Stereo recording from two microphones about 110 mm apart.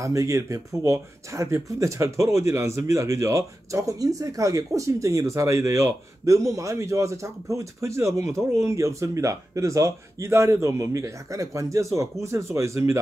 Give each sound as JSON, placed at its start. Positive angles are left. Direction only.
{"t": 0.0, "sound": "speech", "side_deg": -30}